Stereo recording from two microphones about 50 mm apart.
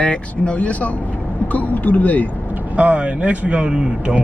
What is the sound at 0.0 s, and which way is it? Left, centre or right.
Speech, left.